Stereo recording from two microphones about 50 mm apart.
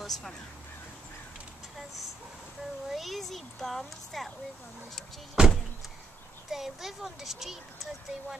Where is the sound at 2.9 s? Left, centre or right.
Centre.